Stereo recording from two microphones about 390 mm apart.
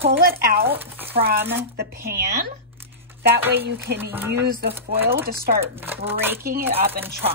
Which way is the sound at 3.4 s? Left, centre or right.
Centre.